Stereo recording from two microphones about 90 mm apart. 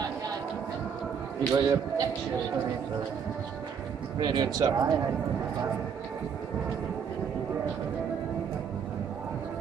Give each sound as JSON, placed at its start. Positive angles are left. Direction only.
{"t": 1.5, "sound": "a man's voice", "side_deg": -40}
{"t": 4.2, "sound": "speech", "side_deg": -50}